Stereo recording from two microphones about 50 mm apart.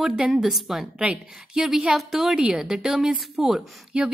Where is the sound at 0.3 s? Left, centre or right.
Centre.